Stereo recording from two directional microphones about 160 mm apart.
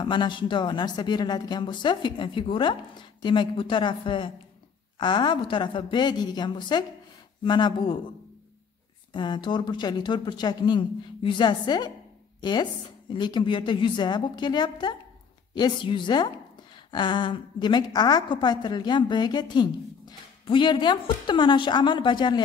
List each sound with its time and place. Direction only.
0.0 s a woman's voice: 30° left (ahead or behind)
9.1 s a woman's voice: 30° left (ahead or behind)